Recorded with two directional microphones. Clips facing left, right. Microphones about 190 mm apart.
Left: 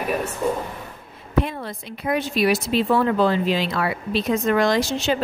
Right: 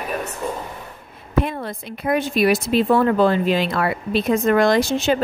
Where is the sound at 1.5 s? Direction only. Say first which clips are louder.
Right 3 dB; 50° right (ahead or behind).